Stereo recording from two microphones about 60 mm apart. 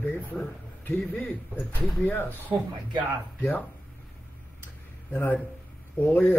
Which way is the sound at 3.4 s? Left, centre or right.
Left.